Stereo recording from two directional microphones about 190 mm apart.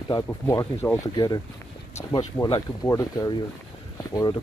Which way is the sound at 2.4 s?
15° left (ahead or behind).